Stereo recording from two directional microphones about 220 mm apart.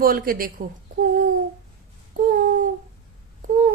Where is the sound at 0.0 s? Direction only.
40° right (ahead or behind).